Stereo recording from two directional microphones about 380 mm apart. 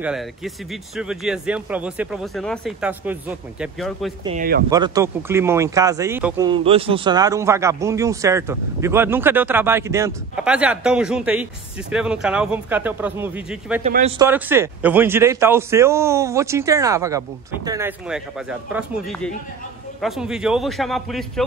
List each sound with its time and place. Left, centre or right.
0.0 s speech: centre
4.2 s a man's voice: centre
4.6 s speech: centre
13.8 s speech: centre